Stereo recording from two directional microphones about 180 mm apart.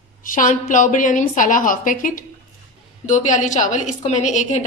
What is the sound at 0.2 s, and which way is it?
A woman's voice, 50° left (ahead or behind).